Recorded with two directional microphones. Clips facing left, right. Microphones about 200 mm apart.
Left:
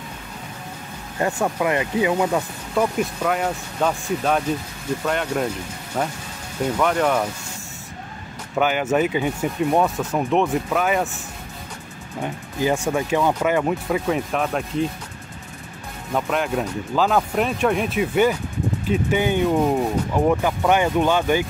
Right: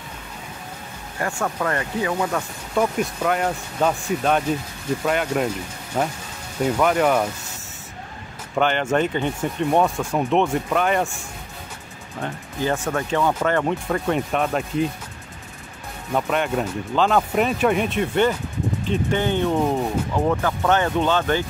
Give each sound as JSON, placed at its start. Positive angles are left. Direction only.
{"t": 1.2, "sound": "speech", "side_deg": 15}
{"t": 2.7, "sound": "speech", "side_deg": -5}
{"t": 8.5, "sound": "speech", "side_deg": 5}
{"t": 12.2, "sound": "speech", "side_deg": 10}
{"t": 16.1, "sound": "speech", "side_deg": 0}